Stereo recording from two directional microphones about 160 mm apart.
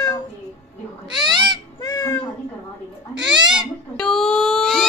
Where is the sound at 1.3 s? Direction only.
30° right (ahead or behind).